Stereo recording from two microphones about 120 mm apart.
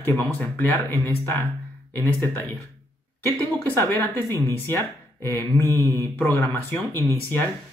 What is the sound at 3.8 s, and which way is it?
Speech, 30° right (ahead or behind).